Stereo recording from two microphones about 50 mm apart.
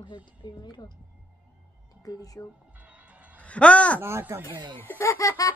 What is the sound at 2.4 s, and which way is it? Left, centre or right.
Speech, left.